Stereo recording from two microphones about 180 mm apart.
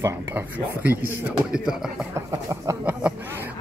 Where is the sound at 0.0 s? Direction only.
15° right (ahead or behind).